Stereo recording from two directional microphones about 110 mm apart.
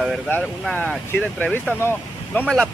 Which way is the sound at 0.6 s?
5° left (ahead or behind).